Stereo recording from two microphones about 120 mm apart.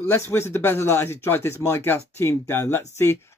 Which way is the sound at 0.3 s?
20° left (ahead or behind).